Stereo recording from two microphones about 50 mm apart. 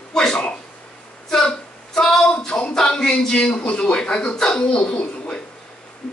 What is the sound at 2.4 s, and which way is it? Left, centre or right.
A man's voice, centre.